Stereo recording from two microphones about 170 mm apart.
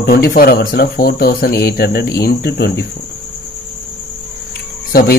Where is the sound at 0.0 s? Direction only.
60° left (ahead or behind).